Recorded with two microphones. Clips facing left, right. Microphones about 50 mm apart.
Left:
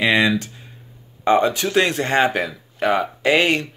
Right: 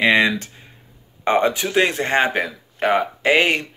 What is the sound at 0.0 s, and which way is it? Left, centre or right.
Speech, right.